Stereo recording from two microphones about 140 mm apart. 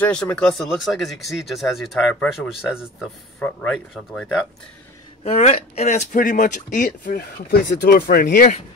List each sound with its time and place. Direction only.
0.0 s speech: 10° left (ahead or behind)
3.3 s speech: 10° left (ahead or behind)
5.2 s speech: 50° left (ahead or behind); by 8.5 s 80° left